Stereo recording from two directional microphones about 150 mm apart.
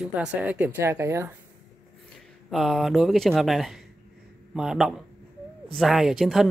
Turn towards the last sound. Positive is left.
turn(degrees=0)  # may be behind; listen again after turning